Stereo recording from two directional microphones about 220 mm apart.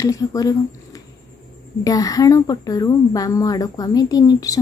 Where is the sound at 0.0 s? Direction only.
15° left (ahead or behind).